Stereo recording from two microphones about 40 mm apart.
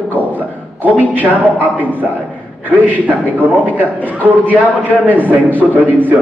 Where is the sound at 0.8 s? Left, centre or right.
Right.